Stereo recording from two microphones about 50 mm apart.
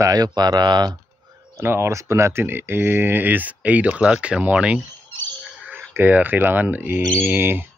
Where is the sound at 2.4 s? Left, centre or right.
Right.